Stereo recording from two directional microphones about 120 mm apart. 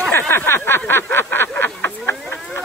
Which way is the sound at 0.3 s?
15° left (ahead or behind).